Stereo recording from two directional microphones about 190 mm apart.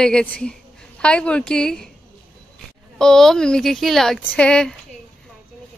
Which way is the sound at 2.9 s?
Centre (ahead or behind).